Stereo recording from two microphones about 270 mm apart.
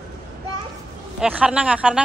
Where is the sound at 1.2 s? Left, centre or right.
Centre.